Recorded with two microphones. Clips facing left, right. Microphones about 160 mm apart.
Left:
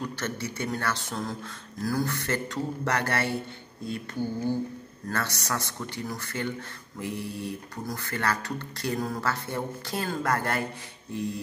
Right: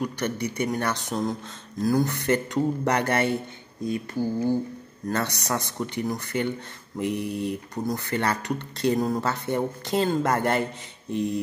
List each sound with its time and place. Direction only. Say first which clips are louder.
0.0 s a man's voice: right 5 dB; 15° right (ahead or behind)